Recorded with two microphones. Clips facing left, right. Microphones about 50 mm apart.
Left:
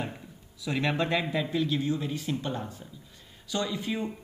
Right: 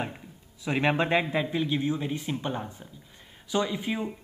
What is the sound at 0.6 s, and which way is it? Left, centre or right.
Speech, right.